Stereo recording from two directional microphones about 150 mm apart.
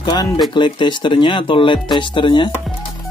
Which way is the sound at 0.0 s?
30° left (ahead or behind).